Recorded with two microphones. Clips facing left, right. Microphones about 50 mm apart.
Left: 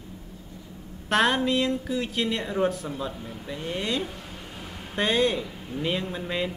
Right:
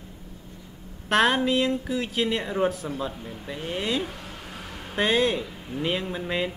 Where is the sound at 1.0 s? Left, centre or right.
Centre.